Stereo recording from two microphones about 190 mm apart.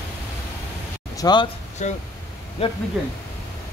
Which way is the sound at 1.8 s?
40° left (ahead or behind).